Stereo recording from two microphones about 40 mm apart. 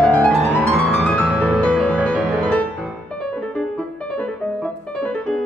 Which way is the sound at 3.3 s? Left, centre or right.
Left.